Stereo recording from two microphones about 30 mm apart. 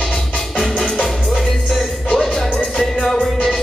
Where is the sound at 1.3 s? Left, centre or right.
Centre.